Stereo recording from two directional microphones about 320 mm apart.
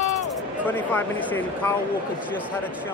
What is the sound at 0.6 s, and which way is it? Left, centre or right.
Speech, centre.